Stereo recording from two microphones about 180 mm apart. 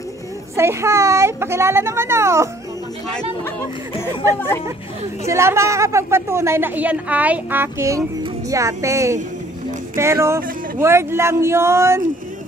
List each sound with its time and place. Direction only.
0.6 s a woman's voice: 15° right (ahead or behind)
3.1 s speech: 5° left (ahead or behind)
5.2 s a woman's voice: 15° right (ahead or behind)